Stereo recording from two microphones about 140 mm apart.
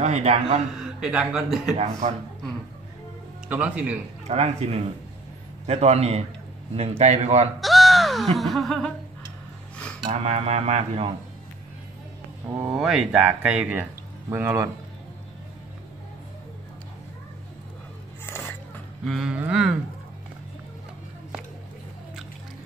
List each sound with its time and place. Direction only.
0.0 s speech: 55° right (ahead or behind)
0.7 s speech: 5° right (ahead or behind)
1.8 s a man's voice: 55° right (ahead or behind)
3.4 s speech: 10° right (ahead or behind)
4.3 s speech: 50° right (ahead or behind)
7.6 s caw: centre (ahead or behind)
8.4 s speech: centre (ahead or behind)
9.8 s dishes: 5° left (ahead or behind)
10.1 s speech: 50° right (ahead or behind)
12.6 s a man's voice: 5° right (ahead or behind); by 14.7 s 20° right (ahead or behind)
19.0 s speech: centre (ahead or behind)